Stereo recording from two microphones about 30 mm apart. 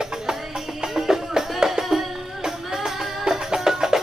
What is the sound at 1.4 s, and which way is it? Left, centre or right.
Music, centre.